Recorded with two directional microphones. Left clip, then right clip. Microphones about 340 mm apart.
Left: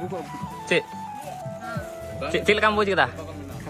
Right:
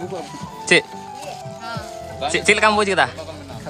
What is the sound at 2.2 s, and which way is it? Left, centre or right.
Speech, centre.